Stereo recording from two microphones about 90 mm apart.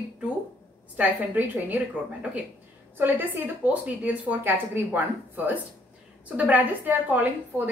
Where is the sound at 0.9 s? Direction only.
20° right (ahead or behind).